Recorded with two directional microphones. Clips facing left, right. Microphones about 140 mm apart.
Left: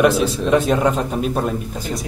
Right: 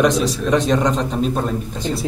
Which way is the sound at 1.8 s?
30° right (ahead or behind).